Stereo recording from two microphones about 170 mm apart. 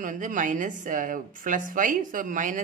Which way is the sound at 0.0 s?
50° right (ahead or behind).